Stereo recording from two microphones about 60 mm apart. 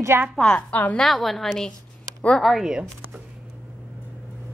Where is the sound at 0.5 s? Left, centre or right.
Left.